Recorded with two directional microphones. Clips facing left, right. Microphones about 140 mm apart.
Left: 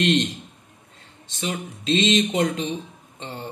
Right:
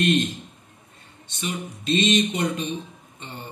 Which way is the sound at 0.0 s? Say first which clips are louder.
Left 1 dB; 90° left.